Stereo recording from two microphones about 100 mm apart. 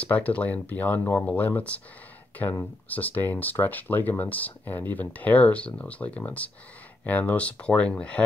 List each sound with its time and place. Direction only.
0.0 s speech: 15° left (ahead or behind)
2.9 s speech: 15° left (ahead or behind)